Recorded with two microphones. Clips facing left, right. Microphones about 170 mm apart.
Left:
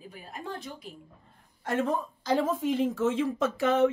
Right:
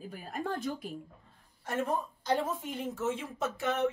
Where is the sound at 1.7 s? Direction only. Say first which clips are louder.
Left 4 dB; 90° left.